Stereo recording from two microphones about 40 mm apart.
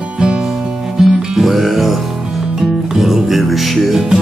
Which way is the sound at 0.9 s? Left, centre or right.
Centre.